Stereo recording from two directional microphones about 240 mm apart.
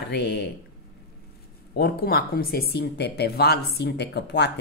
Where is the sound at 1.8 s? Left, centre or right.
Left.